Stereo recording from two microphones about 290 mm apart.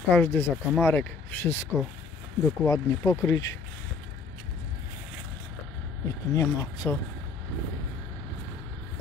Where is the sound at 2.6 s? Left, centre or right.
Centre.